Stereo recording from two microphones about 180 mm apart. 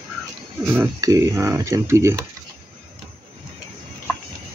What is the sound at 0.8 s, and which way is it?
Speech, 20° right (ahead or behind).